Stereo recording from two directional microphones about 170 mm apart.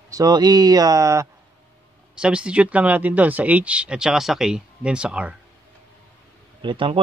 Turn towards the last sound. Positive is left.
turn(degrees=-30)  # may be behind; listen again after turning